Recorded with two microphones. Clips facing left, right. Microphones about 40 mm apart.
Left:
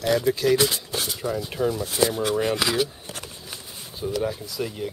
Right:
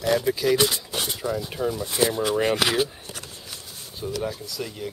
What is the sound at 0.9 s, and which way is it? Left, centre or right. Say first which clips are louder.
Speech: even; right.